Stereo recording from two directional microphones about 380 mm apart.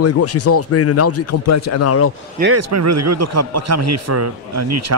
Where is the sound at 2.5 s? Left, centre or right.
Right.